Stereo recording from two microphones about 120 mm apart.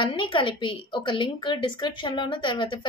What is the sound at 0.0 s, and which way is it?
A woman's voice, 40° left (ahead or behind).